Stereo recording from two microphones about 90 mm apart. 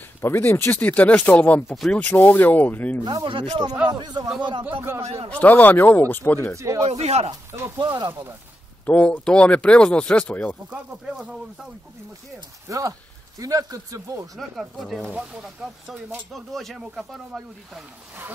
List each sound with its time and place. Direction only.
0.2 s speech: 25° left (ahead or behind)
3.0 s speech: 45° right (ahead or behind)
3.3 s speech: 65° right (ahead or behind)
3.8 s speech: 55° right (ahead or behind)
4.8 s speech: 30° right (ahead or behind)
5.3 s speech: 20° left (ahead or behind)
6.5 s speech: 35° right (ahead or behind)
7.8 s speech: 55° right (ahead or behind)
8.8 s speech: 15° left (ahead or behind)
10.7 s speech: 10° right (ahead or behind)
12.6 s speech: 40° right (ahead or behind)
14.6 s speech: centre (ahead or behind)